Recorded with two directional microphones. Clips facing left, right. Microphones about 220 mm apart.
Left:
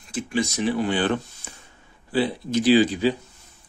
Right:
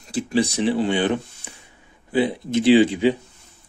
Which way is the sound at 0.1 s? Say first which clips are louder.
Right 4 dB; 35° right (ahead or behind).